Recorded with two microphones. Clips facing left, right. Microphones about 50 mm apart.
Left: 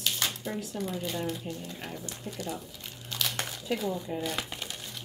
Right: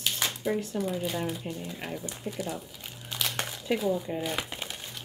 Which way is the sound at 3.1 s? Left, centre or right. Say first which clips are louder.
Right 1 dB; centre.